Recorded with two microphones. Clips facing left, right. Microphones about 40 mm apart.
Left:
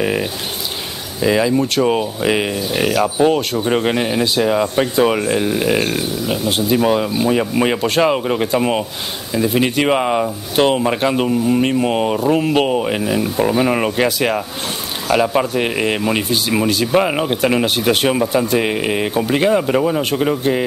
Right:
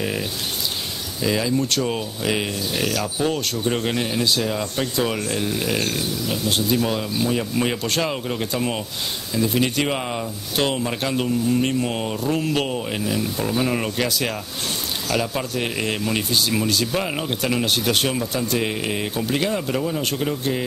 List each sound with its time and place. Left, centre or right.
0.0 s a sound: left
1.2 s speech: left
20.0 s speech: centre